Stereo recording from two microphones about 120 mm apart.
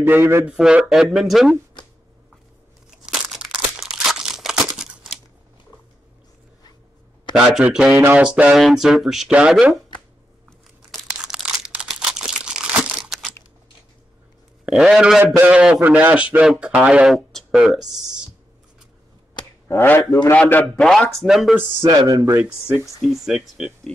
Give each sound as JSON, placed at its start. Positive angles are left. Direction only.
{"t": 0.0, "sound": "a man's voice", "side_deg": -20}
{"t": 0.6, "sound": "speech", "side_deg": -5}
{"t": 3.1, "sound": "crumpling", "side_deg": -5}
{"t": 7.3, "sound": "speech", "side_deg": -5}
{"t": 10.9, "sound": "crumpling", "side_deg": 0}
{"t": 14.7, "sound": "a man's voice", "side_deg": -5}
{"t": 19.7, "sound": "speech", "side_deg": 20}
{"t": 20.3, "sound": "a man's voice", "side_deg": 15}
{"t": 20.7, "sound": "speech", "side_deg": 5}
{"t": 22.0, "sound": "a man's voice", "side_deg": -25}
{"t": 23.0, "sound": "speech", "side_deg": 0}